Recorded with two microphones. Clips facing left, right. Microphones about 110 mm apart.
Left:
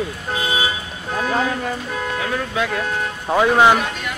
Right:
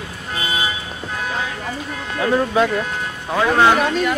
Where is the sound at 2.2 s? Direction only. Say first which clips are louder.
Right 9 dB; 35° right (ahead or behind).